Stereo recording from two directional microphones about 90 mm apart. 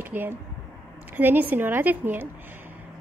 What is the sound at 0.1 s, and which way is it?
A woman's voice, 20° right (ahead or behind).